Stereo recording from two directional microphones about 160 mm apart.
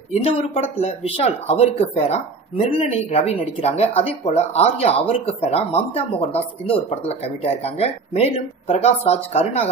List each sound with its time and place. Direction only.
0.1 s speech: 40° left (ahead or behind)